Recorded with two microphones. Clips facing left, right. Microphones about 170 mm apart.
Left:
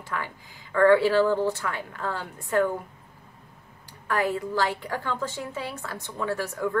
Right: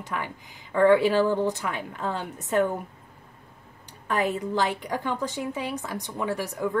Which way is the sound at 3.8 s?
20° right (ahead or behind).